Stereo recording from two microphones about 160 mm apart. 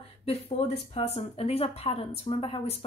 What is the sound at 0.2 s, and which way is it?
Speech, 40° left (ahead or behind).